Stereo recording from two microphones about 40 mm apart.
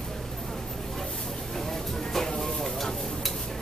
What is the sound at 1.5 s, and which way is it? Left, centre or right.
Vehicle, centre.